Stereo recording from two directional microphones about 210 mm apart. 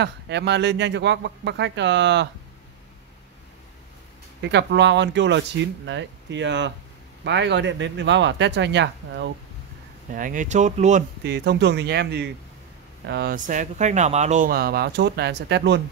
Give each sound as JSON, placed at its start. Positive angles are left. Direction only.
{"t": 0.0, "sound": "speech", "side_deg": -55}
{"t": 4.4, "sound": "speech", "side_deg": -55}
{"t": 10.1, "sound": "speech", "side_deg": -40}
{"t": 11.2, "sound": "speech", "side_deg": -55}